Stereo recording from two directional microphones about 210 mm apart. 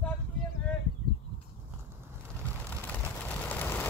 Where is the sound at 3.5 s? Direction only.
10° left (ahead or behind).